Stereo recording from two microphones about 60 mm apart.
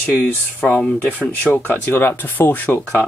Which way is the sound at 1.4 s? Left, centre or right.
Left.